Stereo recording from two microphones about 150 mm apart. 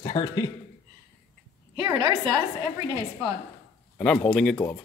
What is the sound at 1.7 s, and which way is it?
Speech, 30° right (ahead or behind).